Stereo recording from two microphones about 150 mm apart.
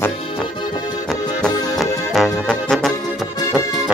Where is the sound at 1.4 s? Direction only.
Centre (ahead or behind).